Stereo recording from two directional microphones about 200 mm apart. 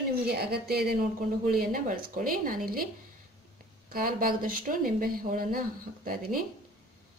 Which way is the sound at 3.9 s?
45° right (ahead or behind).